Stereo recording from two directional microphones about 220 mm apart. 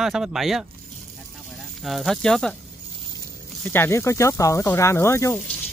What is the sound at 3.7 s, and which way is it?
Speech, 10° left (ahead or behind).